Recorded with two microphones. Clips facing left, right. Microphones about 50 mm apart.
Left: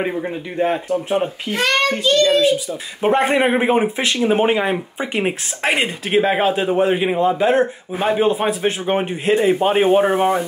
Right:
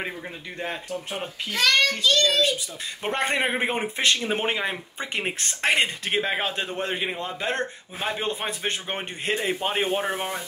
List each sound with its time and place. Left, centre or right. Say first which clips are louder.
1.1 s a child's voice: left 7 dB; left
3.0 s a man's voice: left 9 dB; centre